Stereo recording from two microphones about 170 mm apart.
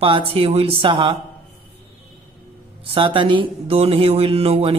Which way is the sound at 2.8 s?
30° right (ahead or behind).